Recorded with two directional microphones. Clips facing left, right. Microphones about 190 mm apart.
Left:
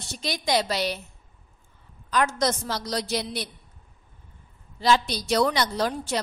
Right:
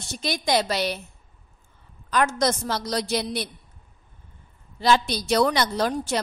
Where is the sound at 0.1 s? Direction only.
50° right (ahead or behind).